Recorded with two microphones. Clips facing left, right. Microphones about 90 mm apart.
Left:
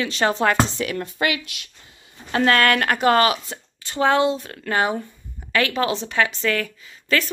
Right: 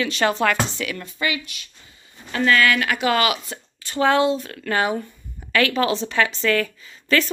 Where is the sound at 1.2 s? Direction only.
75° left (ahead or behind).